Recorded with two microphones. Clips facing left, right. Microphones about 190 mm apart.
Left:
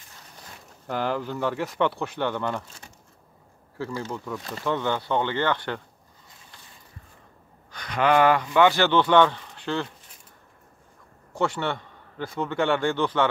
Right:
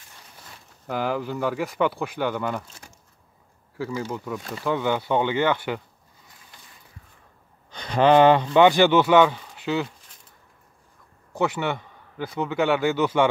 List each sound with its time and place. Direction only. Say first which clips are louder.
0.8 s speech: right 1 dB; 5° right (ahead or behind)
3.7 s speech: right 2 dB; 5° right (ahead or behind)
7.7 s speech: right 4 dB; 25° right (ahead or behind); by 9.8 s 5° right (ahead or behind)
11.5 s a sound: right 2 dB; 15° right (ahead or behind)
12.3 s speech: right 2 dB; 5° right (ahead or behind)